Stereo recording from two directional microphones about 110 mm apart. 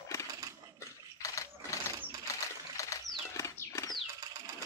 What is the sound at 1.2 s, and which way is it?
Engine, 30° left (ahead or behind).